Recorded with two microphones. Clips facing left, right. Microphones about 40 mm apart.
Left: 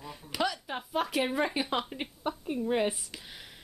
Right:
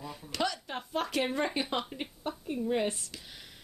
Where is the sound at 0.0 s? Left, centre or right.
Centre.